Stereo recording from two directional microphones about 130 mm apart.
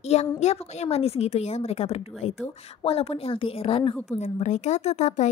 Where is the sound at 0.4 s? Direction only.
60° left (ahead or behind).